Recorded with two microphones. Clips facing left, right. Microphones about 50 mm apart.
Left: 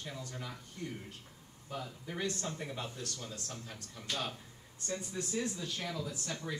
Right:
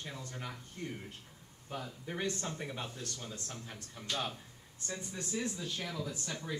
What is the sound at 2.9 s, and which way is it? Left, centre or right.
Speech, centre.